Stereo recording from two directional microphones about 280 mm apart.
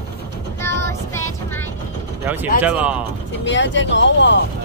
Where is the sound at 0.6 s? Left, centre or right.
Centre.